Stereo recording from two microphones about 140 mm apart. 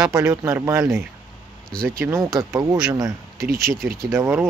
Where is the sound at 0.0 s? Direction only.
25° right (ahead or behind).